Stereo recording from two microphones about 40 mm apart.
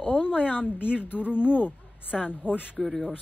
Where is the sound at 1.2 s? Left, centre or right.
Right.